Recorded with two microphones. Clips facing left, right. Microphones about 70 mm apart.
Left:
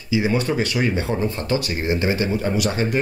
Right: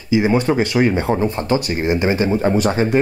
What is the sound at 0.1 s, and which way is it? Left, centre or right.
Speech, right.